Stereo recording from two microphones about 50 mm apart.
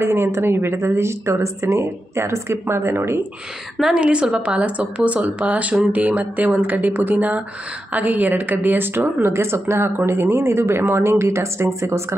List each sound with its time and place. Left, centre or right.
0.0 s speech: right
3.9 s a woman's voice: right
9.3 s speech: right